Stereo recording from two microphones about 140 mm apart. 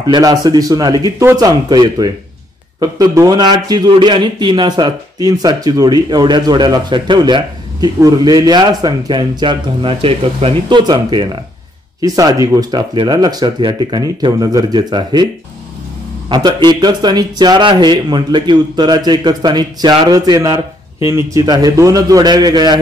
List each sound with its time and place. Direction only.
0.1 s a man's voice: 30° right (ahead or behind)
16.3 s a man's voice: 30° right (ahead or behind)